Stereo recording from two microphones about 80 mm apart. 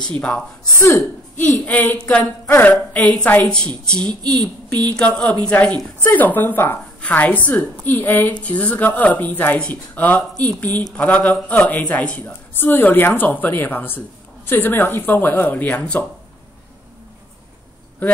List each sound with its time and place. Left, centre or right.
0.2 s a woman's voice: centre
0.7 s speech: left
1.7 s a woman's voice: left
4.1 s a woman's voice: right
4.9 s a woman's voice: centre